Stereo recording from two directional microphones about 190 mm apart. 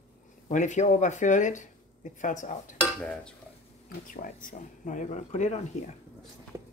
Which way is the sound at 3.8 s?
45° left (ahead or behind).